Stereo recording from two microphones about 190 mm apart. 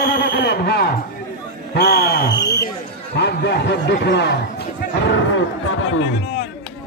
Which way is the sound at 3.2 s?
60° left (ahead or behind).